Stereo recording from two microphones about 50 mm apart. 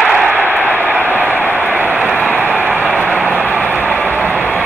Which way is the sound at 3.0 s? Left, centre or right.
Right.